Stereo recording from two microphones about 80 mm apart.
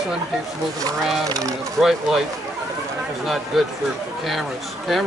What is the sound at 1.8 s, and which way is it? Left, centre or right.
Speech, centre.